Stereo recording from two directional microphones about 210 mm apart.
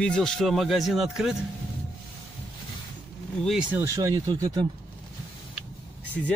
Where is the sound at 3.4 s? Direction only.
5° right (ahead or behind).